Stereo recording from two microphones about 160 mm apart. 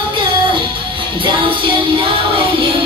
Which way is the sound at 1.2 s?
30° right (ahead or behind).